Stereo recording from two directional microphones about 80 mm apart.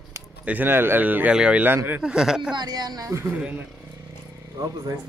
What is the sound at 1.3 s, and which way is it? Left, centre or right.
Speech, centre.